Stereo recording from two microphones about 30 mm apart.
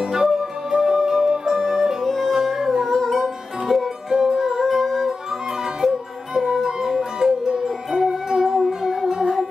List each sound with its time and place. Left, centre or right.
0.0 s music: centre
1.5 s music: centre
2.0 s music: centre
2.3 s music: centre
2.9 s music: centre
3.6 s music: centre
5.6 s music: centre